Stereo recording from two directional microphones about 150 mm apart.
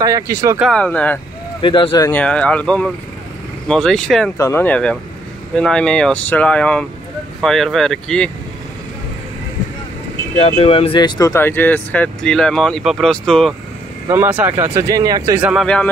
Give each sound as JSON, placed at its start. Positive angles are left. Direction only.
{"t": 0.0, "sound": "speech", "side_deg": -20}
{"t": 0.6, "sound": "speech", "side_deg": 5}
{"t": 1.6, "sound": "speech", "side_deg": 35}
{"t": 2.0, "sound": "speech", "side_deg": 10}
{"t": 4.4, "sound": "speech", "side_deg": 15}
{"t": 10.4, "sound": "speech", "side_deg": 40}
{"t": 14.0, "sound": "speech", "side_deg": -15}
{"t": 15.6, "sound": "speech", "side_deg": 5}